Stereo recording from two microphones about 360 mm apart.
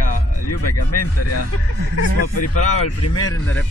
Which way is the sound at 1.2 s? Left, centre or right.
Left.